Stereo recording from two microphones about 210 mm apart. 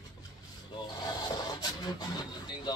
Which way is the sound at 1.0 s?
20° left (ahead or behind).